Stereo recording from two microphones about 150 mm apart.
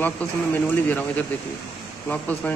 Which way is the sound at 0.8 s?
10° left (ahead or behind).